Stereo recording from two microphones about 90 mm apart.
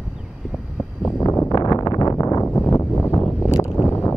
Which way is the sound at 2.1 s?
35° left (ahead or behind).